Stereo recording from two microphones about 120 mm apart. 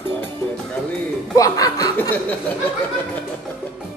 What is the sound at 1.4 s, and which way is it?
Speech, 30° left (ahead or behind).